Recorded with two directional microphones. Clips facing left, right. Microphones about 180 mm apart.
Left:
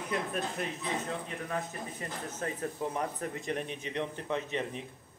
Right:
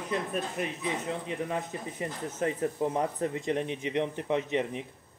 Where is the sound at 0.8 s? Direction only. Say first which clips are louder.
Right 3 dB; 20° right (ahead or behind).